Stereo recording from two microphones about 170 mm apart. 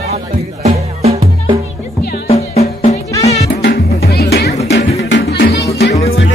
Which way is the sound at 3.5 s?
70° left (ahead or behind).